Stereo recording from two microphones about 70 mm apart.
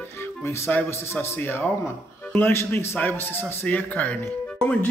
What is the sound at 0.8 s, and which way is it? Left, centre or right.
Speech, left.